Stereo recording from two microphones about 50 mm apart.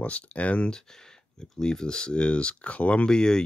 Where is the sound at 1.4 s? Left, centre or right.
Centre.